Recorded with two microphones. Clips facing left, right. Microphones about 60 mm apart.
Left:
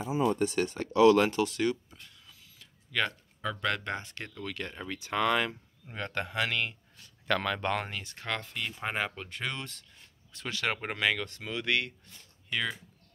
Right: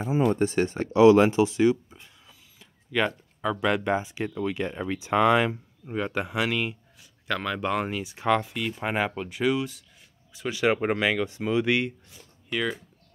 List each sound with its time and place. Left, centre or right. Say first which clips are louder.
0.1 s speech: right 5 dB; right; by 12.7 s centre